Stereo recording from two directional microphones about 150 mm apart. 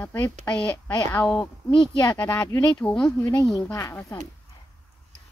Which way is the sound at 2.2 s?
10° left (ahead or behind).